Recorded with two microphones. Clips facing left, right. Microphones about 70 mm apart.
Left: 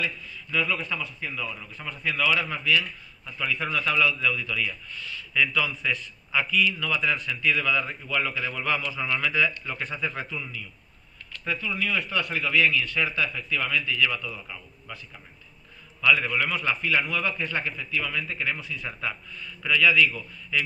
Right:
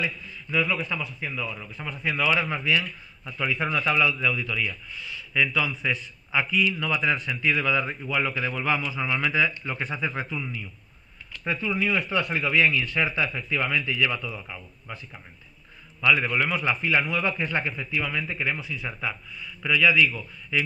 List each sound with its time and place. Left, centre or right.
0.0 s a man's voice: centre
0.7 s a man's voice: centre
11.4 s a man's voice: right
16.0 s a man's voice: centre
16.3 s a man's voice: centre
17.1 s a man's voice: centre
18.6 s a man's voice: centre